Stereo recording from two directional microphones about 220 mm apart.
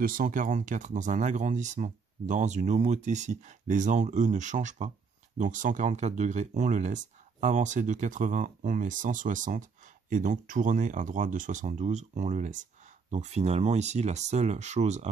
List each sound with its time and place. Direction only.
0.0 s speech: 40° right (ahead or behind)